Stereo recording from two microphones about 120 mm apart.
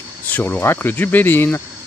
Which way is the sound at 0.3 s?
15° left (ahead or behind).